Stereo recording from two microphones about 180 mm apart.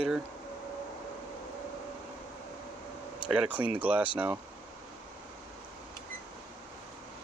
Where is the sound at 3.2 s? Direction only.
5° right (ahead or behind).